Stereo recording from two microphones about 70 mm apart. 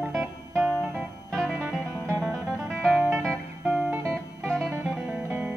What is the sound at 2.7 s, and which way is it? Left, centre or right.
Music, right.